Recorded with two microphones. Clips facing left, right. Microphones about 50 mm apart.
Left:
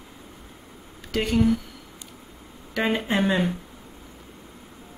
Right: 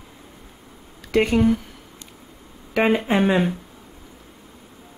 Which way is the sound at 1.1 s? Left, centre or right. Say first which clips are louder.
Right 5 dB; right.